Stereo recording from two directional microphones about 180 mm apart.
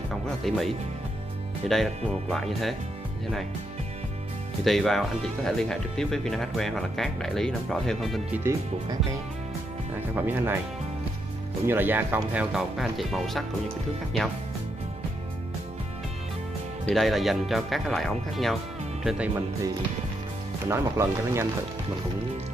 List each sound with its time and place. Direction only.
0.1 s music: centre (ahead or behind)
1.7 s speech: centre (ahead or behind)
4.6 s speech: centre (ahead or behind)
10.1 s speech: 10° right (ahead or behind)
11.6 s speech: 10° right (ahead or behind)
16.8 s speech: centre (ahead or behind)
20.6 s speech: 15° right (ahead or behind)